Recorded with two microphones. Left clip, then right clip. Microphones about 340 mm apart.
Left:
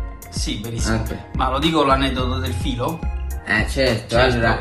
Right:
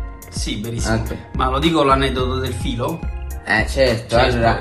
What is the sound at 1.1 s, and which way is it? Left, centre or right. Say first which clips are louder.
Speech: right 1 dB; centre.